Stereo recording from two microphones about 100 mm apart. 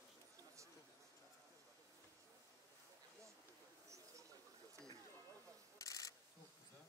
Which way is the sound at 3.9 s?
30° right (ahead or behind).